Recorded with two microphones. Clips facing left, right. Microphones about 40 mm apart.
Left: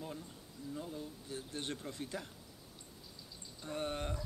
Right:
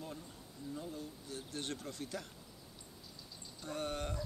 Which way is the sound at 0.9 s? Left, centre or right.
Left.